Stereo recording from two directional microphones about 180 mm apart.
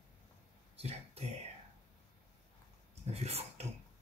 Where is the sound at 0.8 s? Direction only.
35° right (ahead or behind).